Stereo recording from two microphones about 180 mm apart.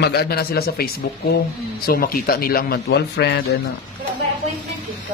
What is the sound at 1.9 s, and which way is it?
A man's voice, 55° left (ahead or behind).